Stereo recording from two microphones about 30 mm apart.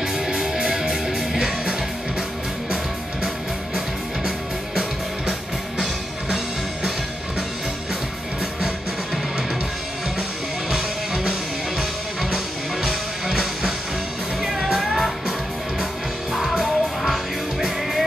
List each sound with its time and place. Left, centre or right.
0.6 s music: centre
10.7 s music: centre
16.3 s music: centre